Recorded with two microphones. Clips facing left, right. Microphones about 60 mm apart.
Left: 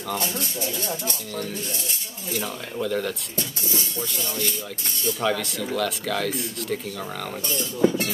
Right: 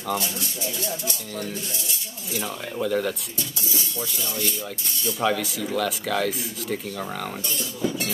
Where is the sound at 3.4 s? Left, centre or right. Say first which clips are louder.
Left 2 dB; left.